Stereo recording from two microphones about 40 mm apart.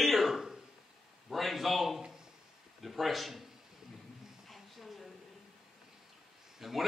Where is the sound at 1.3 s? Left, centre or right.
Centre.